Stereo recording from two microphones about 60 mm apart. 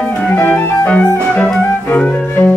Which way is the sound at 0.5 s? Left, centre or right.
Left.